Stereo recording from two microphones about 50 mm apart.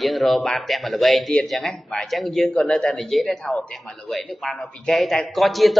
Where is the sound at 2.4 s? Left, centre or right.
Left.